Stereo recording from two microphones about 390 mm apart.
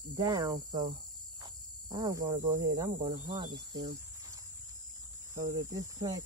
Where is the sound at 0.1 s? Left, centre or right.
Centre.